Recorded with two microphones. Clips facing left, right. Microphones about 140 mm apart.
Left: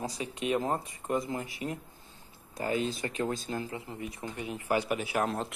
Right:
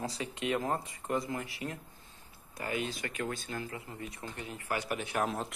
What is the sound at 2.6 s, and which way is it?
Speech, 30° left (ahead or behind).